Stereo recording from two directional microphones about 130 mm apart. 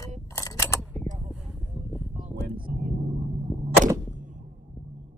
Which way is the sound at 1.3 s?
5° right (ahead or behind).